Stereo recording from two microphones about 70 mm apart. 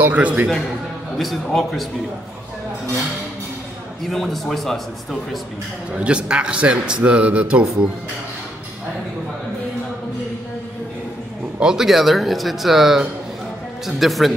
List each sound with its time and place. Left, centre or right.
0.0 s a man's voice: right
1.1 s speech: centre
4.0 s speech: centre
5.9 s a man's voice: centre
11.6 s speech: centre